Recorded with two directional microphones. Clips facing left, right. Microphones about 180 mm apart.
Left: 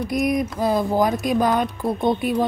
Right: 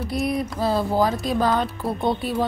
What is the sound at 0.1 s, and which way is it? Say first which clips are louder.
Music: left 3 dB; 15° left (ahead or behind).